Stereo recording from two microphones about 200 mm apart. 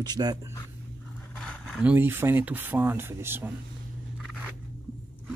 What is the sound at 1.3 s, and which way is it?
Speech, 5° left (ahead or behind).